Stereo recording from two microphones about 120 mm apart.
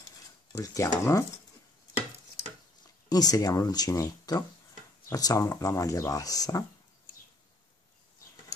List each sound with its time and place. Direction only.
0.5 s speech: 30° left (ahead or behind)
3.1 s speech: 30° left (ahead or behind)